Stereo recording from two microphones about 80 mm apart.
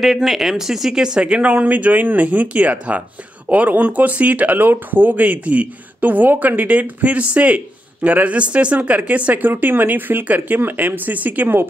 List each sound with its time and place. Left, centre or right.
0.0 s speech: centre; by 11.6 s right